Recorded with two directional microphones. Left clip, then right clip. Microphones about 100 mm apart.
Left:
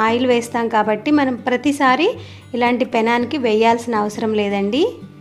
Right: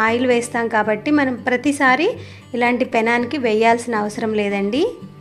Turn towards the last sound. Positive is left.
turn(degrees=15)  # may be behind; listen again after turning